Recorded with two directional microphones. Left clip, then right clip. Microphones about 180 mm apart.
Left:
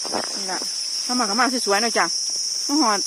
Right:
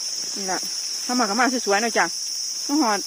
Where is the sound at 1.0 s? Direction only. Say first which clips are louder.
Even; 25° right (ahead or behind).